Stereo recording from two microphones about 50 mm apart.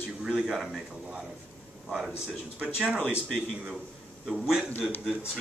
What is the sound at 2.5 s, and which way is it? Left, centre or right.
Speech, right.